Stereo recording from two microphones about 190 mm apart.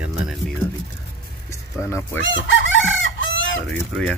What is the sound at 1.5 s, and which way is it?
Music, 15° left (ahead or behind).